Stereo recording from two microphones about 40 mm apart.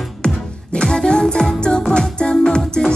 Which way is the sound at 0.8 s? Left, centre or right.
Centre.